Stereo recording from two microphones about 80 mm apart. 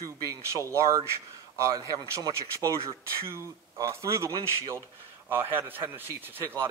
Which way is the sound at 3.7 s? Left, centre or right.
Right.